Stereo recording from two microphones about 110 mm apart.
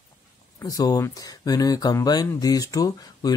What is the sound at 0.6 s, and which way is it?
Speech, 35° left (ahead or behind).